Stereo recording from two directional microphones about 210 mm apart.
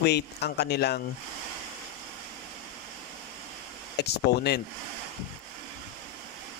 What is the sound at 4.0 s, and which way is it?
Speech, 50° left (ahead or behind).